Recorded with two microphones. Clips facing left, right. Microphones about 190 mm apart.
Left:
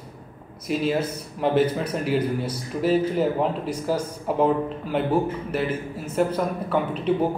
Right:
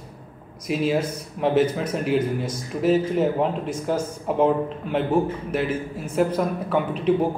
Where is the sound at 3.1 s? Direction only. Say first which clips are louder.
Right 1 dB; 5° right (ahead or behind).